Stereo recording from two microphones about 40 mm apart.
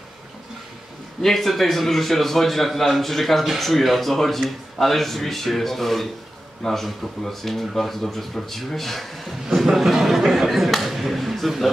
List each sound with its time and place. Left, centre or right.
1.2 s speech: centre